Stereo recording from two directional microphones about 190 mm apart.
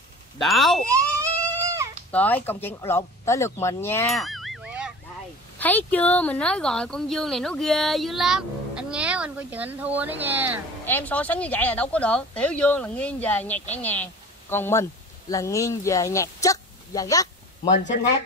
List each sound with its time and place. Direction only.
0.4 s speech: centre (ahead or behind)
0.8 s goat: 15° right (ahead or behind)
2.0 s speech: 10° left (ahead or behind)
4.1 s honk: centre (ahead or behind)
5.6 s speech: 10° left (ahead or behind); by 10.6 s 10° right (ahead or behind)
10.9 s speech: 10° left (ahead or behind)